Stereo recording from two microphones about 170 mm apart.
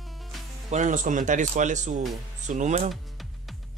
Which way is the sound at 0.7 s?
45° right (ahead or behind).